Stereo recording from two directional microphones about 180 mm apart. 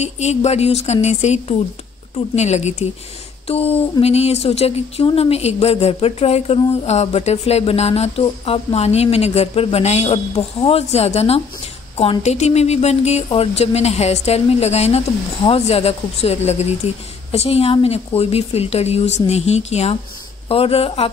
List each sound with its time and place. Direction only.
0.0 s speech: 40° left (ahead or behind)